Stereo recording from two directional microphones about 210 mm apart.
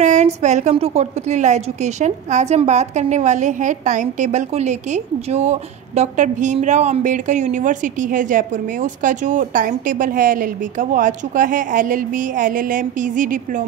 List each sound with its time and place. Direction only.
0.0 s a woman's voice: 35° right (ahead or behind)